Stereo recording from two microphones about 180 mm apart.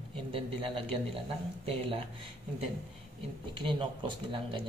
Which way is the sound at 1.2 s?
30° right (ahead or behind).